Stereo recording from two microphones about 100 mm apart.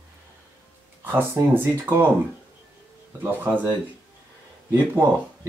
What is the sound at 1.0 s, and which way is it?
Speech, 20° right (ahead or behind).